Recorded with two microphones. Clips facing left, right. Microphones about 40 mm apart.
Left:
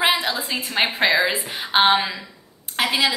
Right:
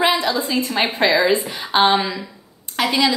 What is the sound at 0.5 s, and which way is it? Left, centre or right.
A woman's voice, centre.